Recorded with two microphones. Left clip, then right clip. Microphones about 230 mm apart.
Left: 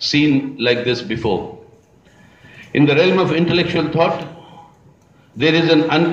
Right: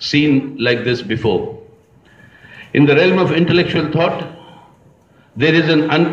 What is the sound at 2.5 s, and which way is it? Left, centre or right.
A man's voice, right.